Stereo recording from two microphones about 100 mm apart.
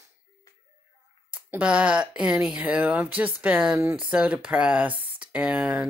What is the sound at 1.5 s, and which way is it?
Speech, 10° right (ahead or behind).